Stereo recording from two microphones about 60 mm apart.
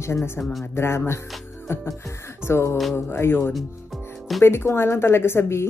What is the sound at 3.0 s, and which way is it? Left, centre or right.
Speech, left.